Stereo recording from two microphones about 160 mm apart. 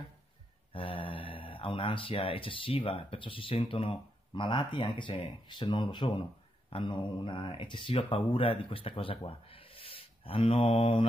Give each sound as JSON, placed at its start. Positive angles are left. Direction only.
{"t": 0.7, "sound": "speech", "side_deg": 35}